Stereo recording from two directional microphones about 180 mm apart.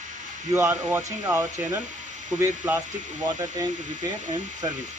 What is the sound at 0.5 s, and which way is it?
Speech, 15° right (ahead or behind).